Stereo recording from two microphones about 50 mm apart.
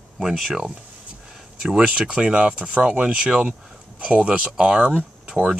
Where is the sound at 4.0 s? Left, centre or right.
Right.